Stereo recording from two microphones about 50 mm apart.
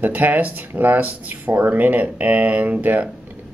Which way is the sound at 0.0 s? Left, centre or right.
Right.